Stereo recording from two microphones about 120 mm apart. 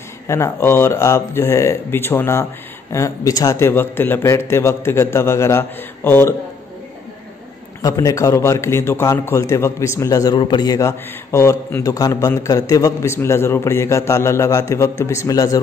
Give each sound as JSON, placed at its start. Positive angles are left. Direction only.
{"t": 0.3, "sound": "a man's voice", "side_deg": 20}
{"t": 7.8, "sound": "a man's voice", "side_deg": 30}